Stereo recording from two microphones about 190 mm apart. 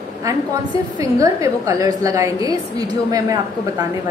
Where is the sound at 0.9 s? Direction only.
15° right (ahead or behind).